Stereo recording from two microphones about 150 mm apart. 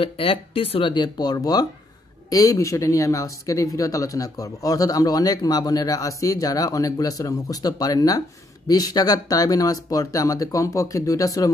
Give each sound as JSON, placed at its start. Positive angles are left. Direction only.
{"t": 0.0, "sound": "speech", "side_deg": 35}